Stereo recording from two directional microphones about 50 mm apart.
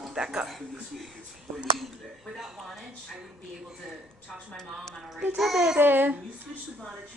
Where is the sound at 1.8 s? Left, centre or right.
Centre.